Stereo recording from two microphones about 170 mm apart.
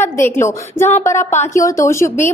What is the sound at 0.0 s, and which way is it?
A woman's voice, 15° left (ahead or behind).